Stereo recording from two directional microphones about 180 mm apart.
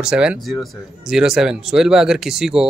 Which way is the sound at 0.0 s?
5° right (ahead or behind).